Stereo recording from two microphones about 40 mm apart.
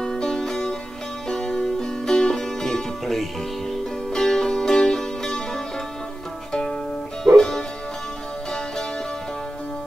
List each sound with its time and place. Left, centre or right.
0.0 s music: centre
4.1 s music: centre